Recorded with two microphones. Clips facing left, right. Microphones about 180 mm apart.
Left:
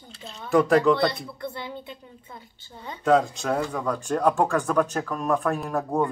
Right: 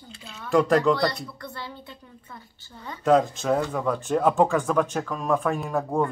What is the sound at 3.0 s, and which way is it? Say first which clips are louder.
Speech: right 1 dB; centre (ahead or behind).